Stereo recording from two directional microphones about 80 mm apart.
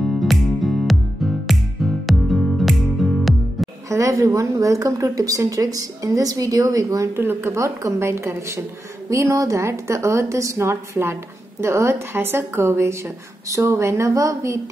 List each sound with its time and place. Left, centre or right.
0.0 s music: centre
3.9 s a woman's voice: right
7.2 s a woman's voice: right